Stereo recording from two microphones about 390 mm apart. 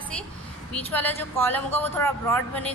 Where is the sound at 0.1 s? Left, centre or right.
Centre.